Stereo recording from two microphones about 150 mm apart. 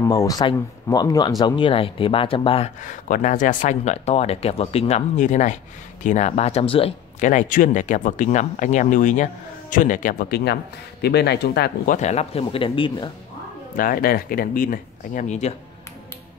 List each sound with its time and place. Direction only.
0.0 s speech: 25° left (ahead or behind); by 2.7 s 40° left (ahead or behind)
2.9 s speech: 55° left (ahead or behind); by 6.9 s 40° left (ahead or behind)
7.2 s speech: 55° left (ahead or behind); by 13.1 s 35° left (ahead or behind)
13.7 s speech: 75° left (ahead or behind); by 15.5 s 50° left (ahead or behind)